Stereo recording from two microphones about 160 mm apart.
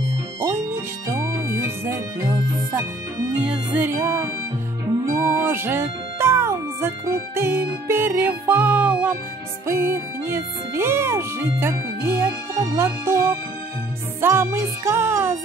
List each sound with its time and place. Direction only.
1.1 s music: 15° right (ahead or behind)
9.7 s speech: 15° right (ahead or behind)